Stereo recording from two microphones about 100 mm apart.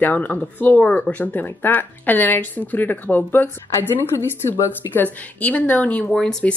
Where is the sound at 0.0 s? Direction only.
15° left (ahead or behind).